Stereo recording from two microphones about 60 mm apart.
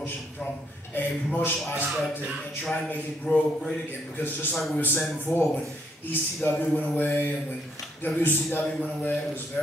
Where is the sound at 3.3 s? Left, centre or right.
Left.